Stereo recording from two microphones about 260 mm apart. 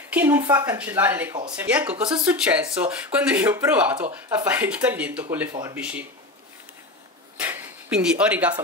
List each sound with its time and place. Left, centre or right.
0.1 s a woman's voice: centre
5.5 s a woman's voice: centre
5.8 s speech: centre
7.3 s a sound: centre